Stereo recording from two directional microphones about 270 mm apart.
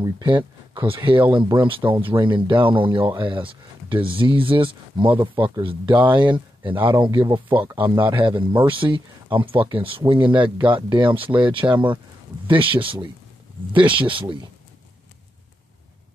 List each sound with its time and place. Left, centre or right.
0.0 s speech: centre